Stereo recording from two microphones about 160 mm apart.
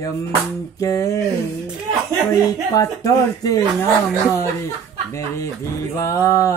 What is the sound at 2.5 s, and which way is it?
Speech, 20° left (ahead or behind).